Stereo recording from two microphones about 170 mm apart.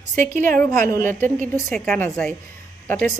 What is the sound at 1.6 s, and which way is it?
A woman's voice, 10° left (ahead or behind).